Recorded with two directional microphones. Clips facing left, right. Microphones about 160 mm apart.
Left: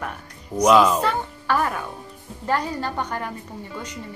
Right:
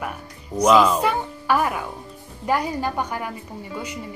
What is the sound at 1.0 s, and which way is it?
Music, 10° right (ahead or behind).